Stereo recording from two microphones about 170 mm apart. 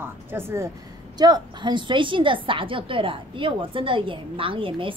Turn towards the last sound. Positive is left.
turn(degrees=-30)  # may be behind; listen again after turning